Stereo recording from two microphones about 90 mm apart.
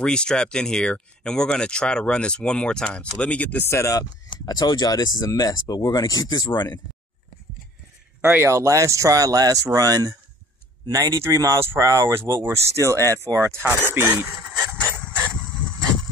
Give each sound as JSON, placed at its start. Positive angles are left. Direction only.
{"t": 0.0, "sound": "speech", "side_deg": 10}
{"t": 3.6, "sound": "speech", "side_deg": 30}
{"t": 4.3, "sound": "speech", "side_deg": 50}
{"t": 8.2, "sound": "speech", "side_deg": -25}
{"t": 8.5, "sound": "speech", "side_deg": -35}
{"t": 14.8, "sound": "a sound", "side_deg": 15}